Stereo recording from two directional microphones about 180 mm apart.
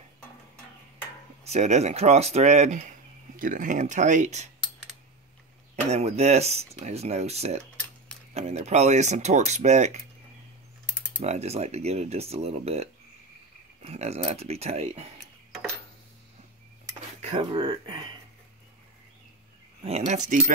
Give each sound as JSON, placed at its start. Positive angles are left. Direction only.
{"t": 1.4, "sound": "speech", "side_deg": -35}
{"t": 5.9, "sound": "speech", "side_deg": -35}
{"t": 11.1, "sound": "speech", "side_deg": -35}
{"t": 17.2, "sound": "speech", "side_deg": -30}
{"t": 19.8, "sound": "speech", "side_deg": -35}